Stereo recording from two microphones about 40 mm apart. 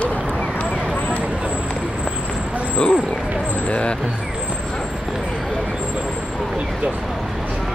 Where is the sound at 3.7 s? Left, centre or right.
Left.